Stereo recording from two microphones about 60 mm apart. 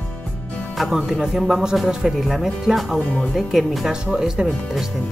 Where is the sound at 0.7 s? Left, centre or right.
Centre.